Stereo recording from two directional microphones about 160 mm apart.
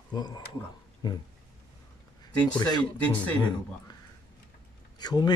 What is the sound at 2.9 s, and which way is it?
Speech, 10° left (ahead or behind).